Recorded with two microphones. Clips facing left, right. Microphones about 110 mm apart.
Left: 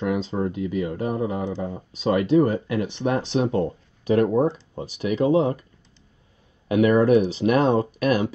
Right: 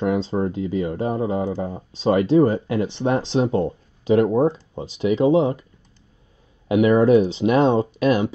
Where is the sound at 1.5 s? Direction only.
40° right (ahead or behind).